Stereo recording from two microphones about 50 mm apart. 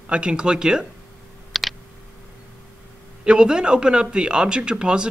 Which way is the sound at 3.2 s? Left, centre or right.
Centre.